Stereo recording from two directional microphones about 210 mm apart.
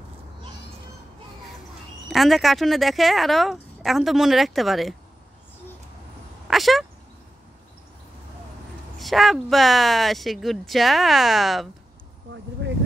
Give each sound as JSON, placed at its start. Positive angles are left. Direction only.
{"t": 2.0, "sound": "speech", "side_deg": 0}
{"t": 6.4, "sound": "speech", "side_deg": 0}
{"t": 8.9, "sound": "speech", "side_deg": 0}
{"t": 12.6, "sound": "speech", "side_deg": -60}